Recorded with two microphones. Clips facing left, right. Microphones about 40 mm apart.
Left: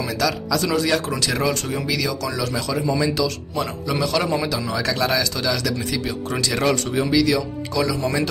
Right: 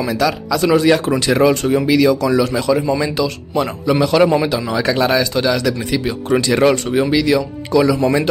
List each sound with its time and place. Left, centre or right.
0.2 s speech: right